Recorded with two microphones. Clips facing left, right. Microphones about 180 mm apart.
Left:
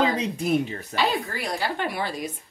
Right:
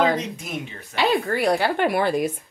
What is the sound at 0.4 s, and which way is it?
Speech, 35° left (ahead or behind).